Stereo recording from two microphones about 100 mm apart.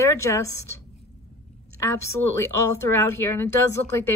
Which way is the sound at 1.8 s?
25° left (ahead or behind).